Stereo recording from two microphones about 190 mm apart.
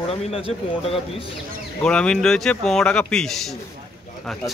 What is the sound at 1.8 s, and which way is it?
A man's voice, 5° left (ahead or behind).